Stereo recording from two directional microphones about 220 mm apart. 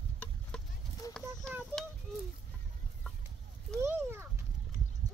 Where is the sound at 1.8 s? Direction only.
Centre (ahead or behind).